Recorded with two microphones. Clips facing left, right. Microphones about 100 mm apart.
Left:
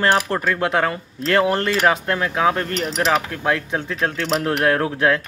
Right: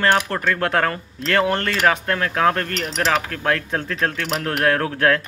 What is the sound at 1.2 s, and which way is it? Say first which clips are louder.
Speech: left 2 dB; 25° left (ahead or behind).